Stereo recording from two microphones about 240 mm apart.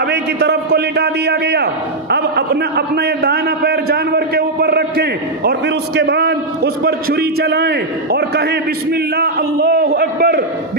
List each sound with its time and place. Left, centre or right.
0.0 s a man's voice: right